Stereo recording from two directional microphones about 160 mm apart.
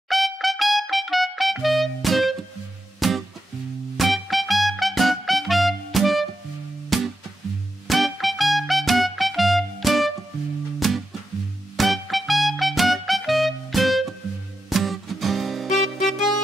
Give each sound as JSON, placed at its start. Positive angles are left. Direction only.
{"t": 0.1, "sound": "music", "side_deg": 0}